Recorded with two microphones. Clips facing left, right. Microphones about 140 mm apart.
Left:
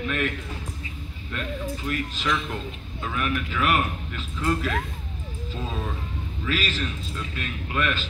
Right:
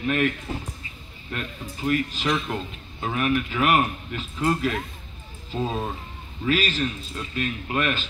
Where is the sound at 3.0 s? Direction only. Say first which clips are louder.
Right 4 dB; 45° right (ahead or behind).